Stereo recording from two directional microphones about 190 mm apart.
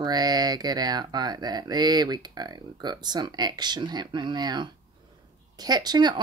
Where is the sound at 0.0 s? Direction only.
20° right (ahead or behind).